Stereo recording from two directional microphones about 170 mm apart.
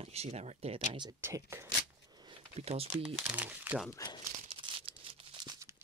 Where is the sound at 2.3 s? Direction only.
35° right (ahead or behind).